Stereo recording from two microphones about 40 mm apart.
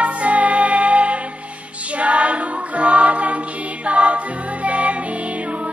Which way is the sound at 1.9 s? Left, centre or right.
Right.